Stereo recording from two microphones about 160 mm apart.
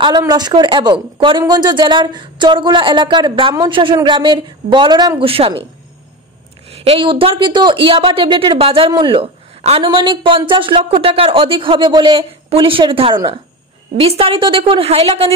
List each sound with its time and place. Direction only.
0.0 s speech: 25° right (ahead or behind)
5.3 s speech: 35° right (ahead or behind)
6.7 s speech: 40° right (ahead or behind)